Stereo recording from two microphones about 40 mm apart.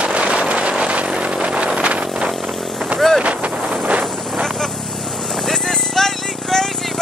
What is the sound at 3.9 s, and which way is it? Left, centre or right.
Boat, right.